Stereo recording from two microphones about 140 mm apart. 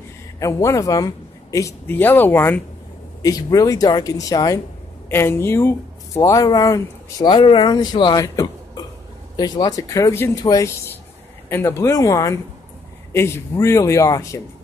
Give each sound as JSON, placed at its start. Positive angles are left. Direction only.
{"t": 0.4, "sound": "speech", "side_deg": 20}
{"t": 3.2, "sound": "speech", "side_deg": 25}